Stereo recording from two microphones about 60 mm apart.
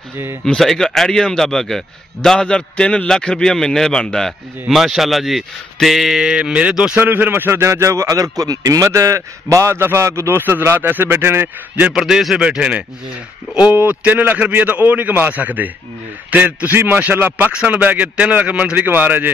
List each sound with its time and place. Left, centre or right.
0.6 s a man's voice: centre
4.7 s speech: centre
6.3 s speech: centre
7.0 s a man's voice: right
8.8 s a man's voice: right
10.4 s a man's voice: right
11.9 s speech: centre
12.4 s a man's voice: centre
13.7 s a man's voice: right
17.6 s a man's voice: right